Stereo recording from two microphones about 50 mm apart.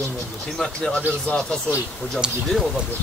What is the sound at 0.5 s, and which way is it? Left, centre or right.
Speech, centre.